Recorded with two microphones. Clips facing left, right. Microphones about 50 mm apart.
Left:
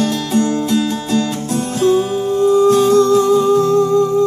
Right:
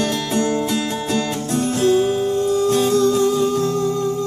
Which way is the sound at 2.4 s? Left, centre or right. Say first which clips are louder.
Left 9 dB; left.